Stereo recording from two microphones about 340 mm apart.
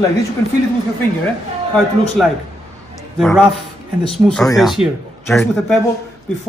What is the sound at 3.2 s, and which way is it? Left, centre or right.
Speech, centre.